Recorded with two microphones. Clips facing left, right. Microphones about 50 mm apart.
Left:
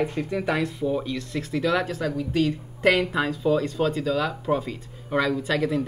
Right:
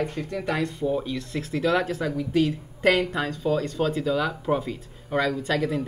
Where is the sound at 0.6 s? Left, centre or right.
Centre.